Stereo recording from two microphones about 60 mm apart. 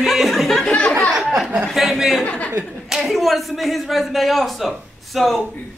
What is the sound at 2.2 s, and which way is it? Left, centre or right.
Speech, left.